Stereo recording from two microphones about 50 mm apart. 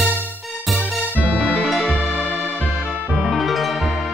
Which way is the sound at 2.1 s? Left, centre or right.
Centre.